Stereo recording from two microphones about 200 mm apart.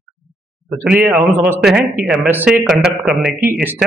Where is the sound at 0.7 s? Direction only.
5° right (ahead or behind).